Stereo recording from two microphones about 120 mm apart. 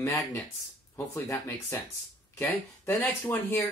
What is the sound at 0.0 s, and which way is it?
Speech, 25° left (ahead or behind).